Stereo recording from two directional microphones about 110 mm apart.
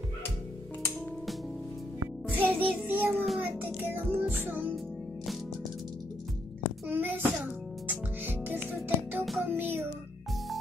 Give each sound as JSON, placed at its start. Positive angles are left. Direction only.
{"t": 2.3, "sound": "child singing", "side_deg": -15}
{"t": 3.4, "sound": "music", "side_deg": -15}
{"t": 6.9, "sound": "child singing", "side_deg": -15}
{"t": 7.9, "sound": "music", "side_deg": -15}
{"t": 9.2, "sound": "music", "side_deg": 0}
{"t": 9.5, "sound": "music", "side_deg": -20}